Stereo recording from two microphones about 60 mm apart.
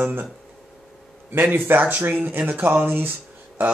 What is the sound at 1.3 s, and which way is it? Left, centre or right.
A man's voice, right.